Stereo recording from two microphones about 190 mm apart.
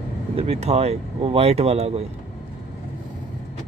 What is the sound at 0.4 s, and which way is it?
Speech, 35° right (ahead or behind).